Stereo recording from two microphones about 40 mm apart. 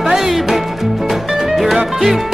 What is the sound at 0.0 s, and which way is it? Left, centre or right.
Music, centre.